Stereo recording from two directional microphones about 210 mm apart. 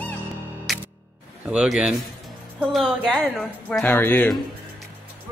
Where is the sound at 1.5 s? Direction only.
5° right (ahead or behind).